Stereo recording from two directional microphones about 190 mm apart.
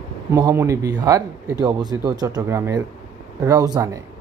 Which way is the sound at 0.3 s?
15° right (ahead or behind).